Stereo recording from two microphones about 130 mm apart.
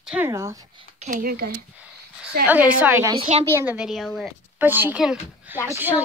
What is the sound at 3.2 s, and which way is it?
Speech, 50° right (ahead or behind).